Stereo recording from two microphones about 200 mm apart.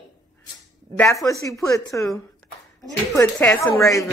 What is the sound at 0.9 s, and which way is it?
A woman's voice, 15° left (ahead or behind).